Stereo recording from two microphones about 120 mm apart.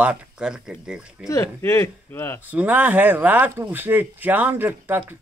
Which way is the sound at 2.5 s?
15° right (ahead or behind).